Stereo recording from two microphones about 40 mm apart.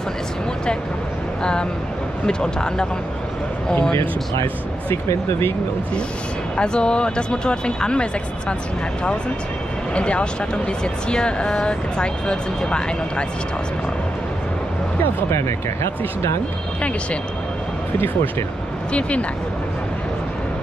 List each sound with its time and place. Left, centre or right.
1.4 s speech: left
6.5 s speech: left
9.9 s speech: left
18.9 s speech: left